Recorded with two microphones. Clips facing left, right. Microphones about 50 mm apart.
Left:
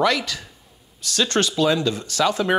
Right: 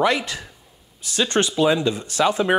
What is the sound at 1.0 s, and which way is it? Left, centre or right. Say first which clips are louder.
Speech: even; centre.